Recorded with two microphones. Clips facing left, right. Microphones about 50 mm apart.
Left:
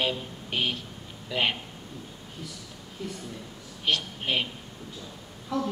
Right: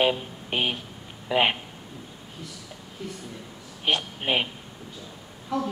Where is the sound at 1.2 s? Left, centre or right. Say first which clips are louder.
Right 5 dB; right.